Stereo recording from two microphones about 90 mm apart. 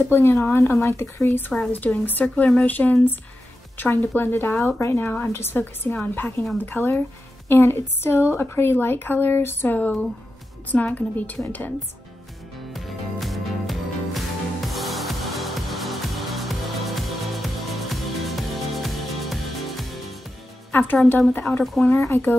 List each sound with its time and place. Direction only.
0.0 s speech: 25° left (ahead or behind)
12.7 s music: centre (ahead or behind)
20.7 s speech: 20° left (ahead or behind)
21.5 s speech: 5° left (ahead or behind)
21.8 s speech: 25° left (ahead or behind)